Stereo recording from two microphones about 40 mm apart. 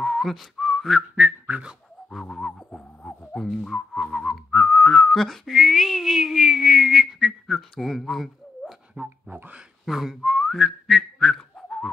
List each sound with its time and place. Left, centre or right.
0.0 s whistling: centre
1.1 s whistling: right
2.1 s speech: centre
2.7 s a sound: left
3.3 s whistling: centre
7.8 s speech: centre
9.0 s a sound: right
9.8 s whistling: centre